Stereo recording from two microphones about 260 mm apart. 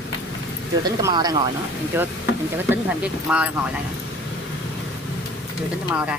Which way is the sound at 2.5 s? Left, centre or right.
Centre.